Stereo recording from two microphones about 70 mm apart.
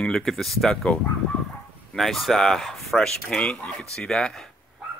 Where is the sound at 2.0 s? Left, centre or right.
Centre.